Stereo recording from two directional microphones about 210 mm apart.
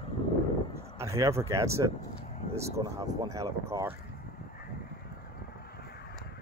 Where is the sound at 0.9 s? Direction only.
15° right (ahead or behind).